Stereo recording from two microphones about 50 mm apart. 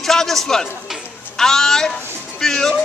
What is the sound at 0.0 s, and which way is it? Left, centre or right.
A man's voice, centre.